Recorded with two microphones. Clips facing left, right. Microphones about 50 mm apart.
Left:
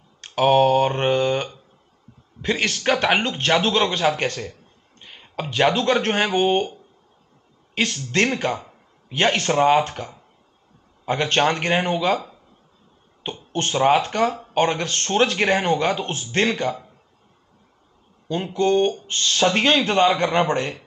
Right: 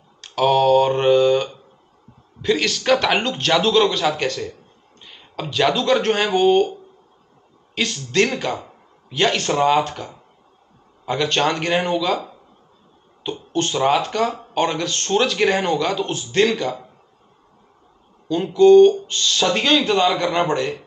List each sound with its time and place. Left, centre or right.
0.2 s speech: left
7.7 s speech: left
11.1 s speech: left
13.2 s speech: left
18.7 s speech: left